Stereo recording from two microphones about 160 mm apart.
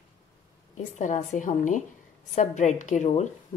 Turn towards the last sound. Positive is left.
turn(degrees=50)  # may be behind; listen again after turning